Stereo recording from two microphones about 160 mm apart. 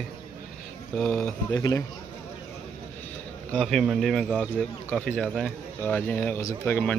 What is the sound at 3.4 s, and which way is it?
Speech, 5° left (ahead or behind).